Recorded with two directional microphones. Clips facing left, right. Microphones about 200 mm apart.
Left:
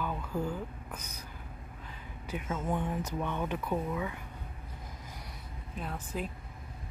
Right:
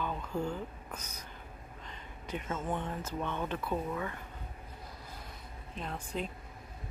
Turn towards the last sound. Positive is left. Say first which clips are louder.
# even
turn(degrees=5)  # may be behind; listen again after turning